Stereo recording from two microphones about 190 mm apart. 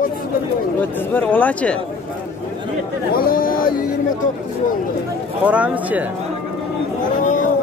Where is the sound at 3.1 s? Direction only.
50° left (ahead or behind).